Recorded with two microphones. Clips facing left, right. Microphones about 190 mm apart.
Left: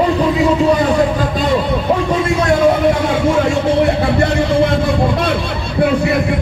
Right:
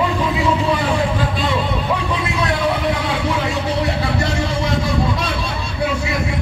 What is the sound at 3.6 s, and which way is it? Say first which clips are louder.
Music: left 7 dB; 55° left (ahead or behind).